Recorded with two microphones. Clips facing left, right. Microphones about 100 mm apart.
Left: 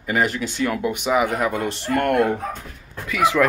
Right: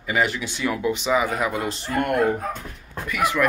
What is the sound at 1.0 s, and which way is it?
Speech, 60° left (ahead or behind).